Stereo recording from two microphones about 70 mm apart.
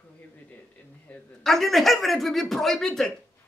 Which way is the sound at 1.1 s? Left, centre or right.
Left.